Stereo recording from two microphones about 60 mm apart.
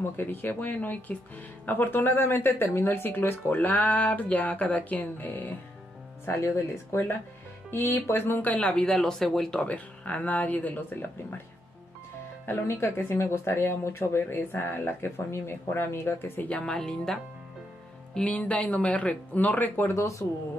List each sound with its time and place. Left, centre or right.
0.0 s speech: left
6.2 s speech: left
8.5 s speech: centre
8.9 s speech: centre
9.6 s speech: left
12.4 s speech: left
16.4 s speech: centre
18.1 s speech: left